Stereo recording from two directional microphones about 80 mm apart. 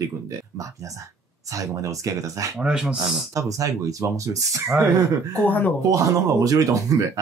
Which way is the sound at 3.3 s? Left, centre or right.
Right.